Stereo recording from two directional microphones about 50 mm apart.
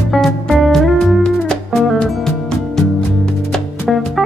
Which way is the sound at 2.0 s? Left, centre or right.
Centre.